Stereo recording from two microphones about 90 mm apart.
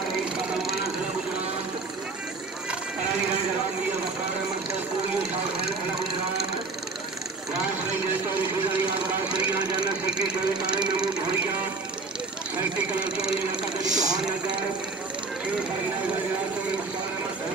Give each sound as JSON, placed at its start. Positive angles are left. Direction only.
{"t": 0.1, "sound": "vehicle", "side_deg": -5}
{"t": 7.6, "sound": "vehicle", "side_deg": -20}
{"t": 9.3, "sound": "speech", "side_deg": -10}
{"t": 9.6, "sound": "speech", "side_deg": -50}
{"t": 10.0, "sound": "speech", "side_deg": -10}
{"t": 12.5, "sound": "speech", "side_deg": -15}
{"t": 13.9, "sound": "speech", "side_deg": -45}